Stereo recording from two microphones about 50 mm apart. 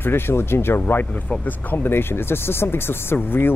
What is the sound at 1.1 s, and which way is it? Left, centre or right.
Speech, left.